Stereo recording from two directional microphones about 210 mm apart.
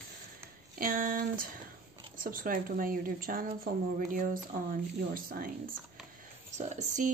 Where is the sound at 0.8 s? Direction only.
40° right (ahead or behind).